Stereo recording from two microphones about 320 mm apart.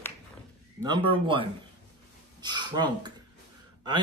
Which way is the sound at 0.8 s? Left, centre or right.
Centre.